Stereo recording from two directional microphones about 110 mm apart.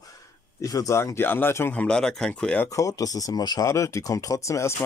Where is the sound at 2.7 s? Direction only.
30° left (ahead or behind).